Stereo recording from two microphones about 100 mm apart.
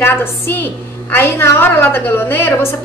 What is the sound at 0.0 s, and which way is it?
A woman's voice, 20° left (ahead or behind).